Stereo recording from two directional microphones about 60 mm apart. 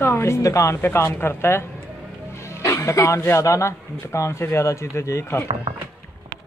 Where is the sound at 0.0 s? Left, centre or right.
Left.